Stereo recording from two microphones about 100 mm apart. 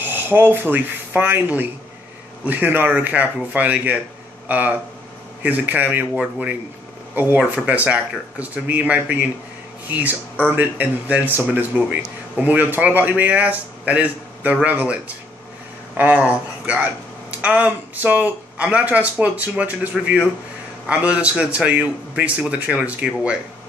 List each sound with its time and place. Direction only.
0.0 s speech: 20° right (ahead or behind)
7.2 s speech: 20° right (ahead or behind)
16.0 s speech: 15° right (ahead or behind)